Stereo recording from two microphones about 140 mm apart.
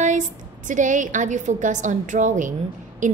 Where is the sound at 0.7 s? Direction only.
65° right (ahead or behind).